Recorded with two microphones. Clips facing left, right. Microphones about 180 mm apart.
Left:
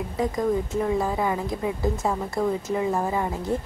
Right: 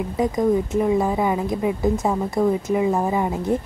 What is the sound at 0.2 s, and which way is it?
A woman's voice, 20° right (ahead or behind).